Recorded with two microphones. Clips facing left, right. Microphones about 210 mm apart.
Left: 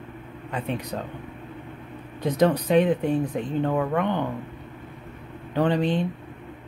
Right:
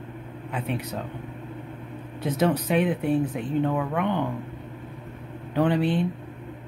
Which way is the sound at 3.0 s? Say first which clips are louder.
Even; 40° left (ahead or behind).